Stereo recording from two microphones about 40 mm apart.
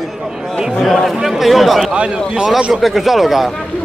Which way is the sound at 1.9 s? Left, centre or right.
Right.